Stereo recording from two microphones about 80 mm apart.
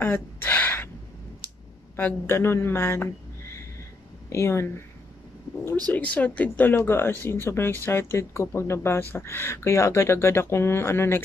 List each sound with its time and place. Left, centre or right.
0.0 s gasp: left
2.0 s speech: left
5.9 s speech: centre